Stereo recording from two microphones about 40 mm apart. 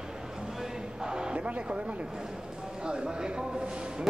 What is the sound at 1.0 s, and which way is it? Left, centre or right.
Music, centre.